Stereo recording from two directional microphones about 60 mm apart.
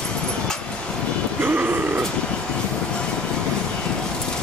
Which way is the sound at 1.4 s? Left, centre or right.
Right.